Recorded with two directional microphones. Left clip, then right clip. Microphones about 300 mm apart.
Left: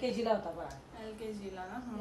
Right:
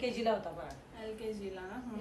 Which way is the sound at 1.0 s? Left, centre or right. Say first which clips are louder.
Right 3 dB; centre.